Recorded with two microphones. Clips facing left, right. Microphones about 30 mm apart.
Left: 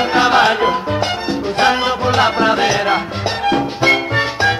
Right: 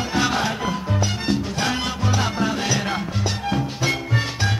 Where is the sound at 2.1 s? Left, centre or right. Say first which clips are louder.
Left 10 dB; left.